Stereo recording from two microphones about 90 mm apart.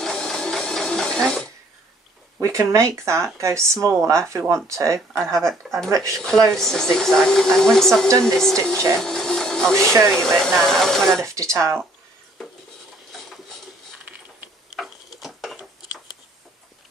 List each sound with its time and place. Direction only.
0.0 s printer: 5° left (ahead or behind)
2.4 s speech: 35° right (ahead or behind)
4.9 s speech: 5° left (ahead or behind)
9.0 s a sound: 5° left (ahead or behind)
10.1 s speech: 5° left (ahead or behind)
11.1 s speech: 35° right (ahead or behind)
14.7 s tick-tock: 5° right (ahead or behind)